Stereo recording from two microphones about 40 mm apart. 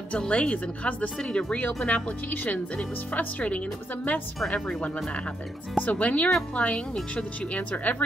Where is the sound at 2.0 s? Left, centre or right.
Left.